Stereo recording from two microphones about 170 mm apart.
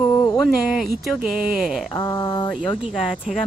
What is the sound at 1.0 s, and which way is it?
Speech, 5° right (ahead or behind).